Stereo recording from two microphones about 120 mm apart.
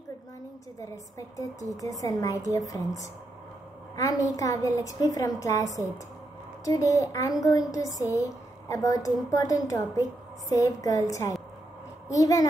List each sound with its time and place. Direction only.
0.7 s a woman's voice: 25° left (ahead or behind)